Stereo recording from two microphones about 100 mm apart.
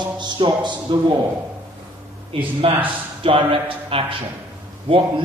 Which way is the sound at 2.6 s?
60° right (ahead or behind).